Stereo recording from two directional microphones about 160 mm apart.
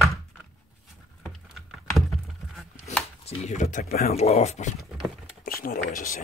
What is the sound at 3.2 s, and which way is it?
Speech, 45° left (ahead or behind).